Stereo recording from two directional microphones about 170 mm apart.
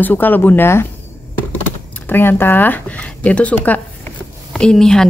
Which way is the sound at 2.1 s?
10° left (ahead or behind).